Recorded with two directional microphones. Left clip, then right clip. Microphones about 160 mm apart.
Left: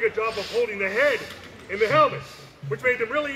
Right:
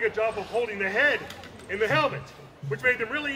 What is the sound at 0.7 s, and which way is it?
A man's voice, 40° right (ahead or behind).